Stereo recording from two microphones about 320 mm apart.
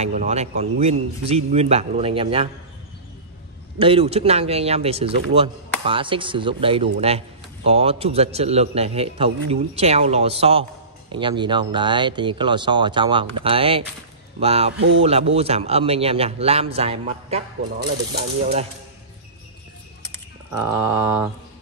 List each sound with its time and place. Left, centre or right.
0.0 s speech: centre
3.8 s speech: centre
20.6 s speech: centre